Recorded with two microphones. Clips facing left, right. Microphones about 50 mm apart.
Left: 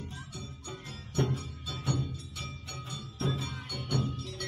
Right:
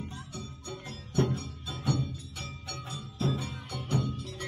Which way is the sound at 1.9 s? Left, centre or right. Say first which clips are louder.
Right 3 dB; centre.